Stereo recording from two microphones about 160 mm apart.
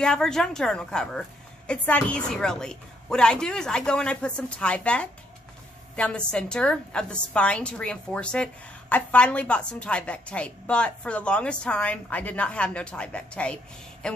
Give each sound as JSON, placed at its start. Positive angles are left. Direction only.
{"t": 0.0, "sound": "a woman's voice", "side_deg": 5}